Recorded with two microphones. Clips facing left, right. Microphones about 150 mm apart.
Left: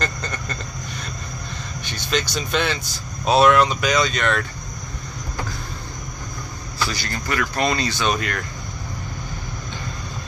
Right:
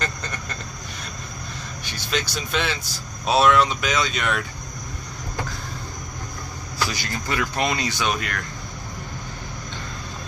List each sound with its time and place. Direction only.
1.9 s speech: 5° right (ahead or behind)
6.9 s speech: 20° right (ahead or behind)
8.1 s speech: centre (ahead or behind)